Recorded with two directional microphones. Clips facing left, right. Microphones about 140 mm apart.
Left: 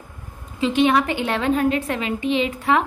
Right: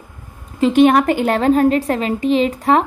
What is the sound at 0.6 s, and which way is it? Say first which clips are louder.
A woman's voice: right 6 dB; 45° right (ahead or behind).